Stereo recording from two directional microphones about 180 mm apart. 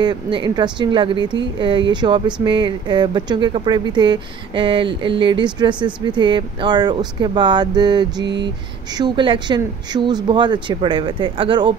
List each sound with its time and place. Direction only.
0.0 s speech: 25° right (ahead or behind)
8.2 s a sound: 75° right (ahead or behind)
8.9 s speech: 25° right (ahead or behind)